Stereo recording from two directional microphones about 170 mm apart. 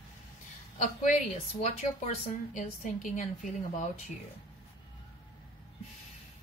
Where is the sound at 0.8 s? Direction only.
45° left (ahead or behind).